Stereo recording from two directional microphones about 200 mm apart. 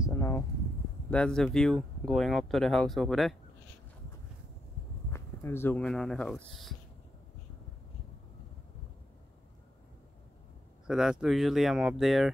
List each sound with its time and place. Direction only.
0.0 s a sound: 15° left (ahead or behind)
1.1 s speech: 5° left (ahead or behind)
5.1 s speech: 10° left (ahead or behind)
10.9 s speech: 5° right (ahead or behind)